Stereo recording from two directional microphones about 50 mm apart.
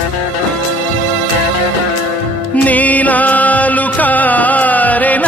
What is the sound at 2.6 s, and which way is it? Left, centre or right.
Music, left.